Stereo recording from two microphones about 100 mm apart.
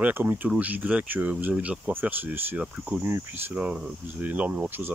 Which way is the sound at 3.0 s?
30° right (ahead or behind).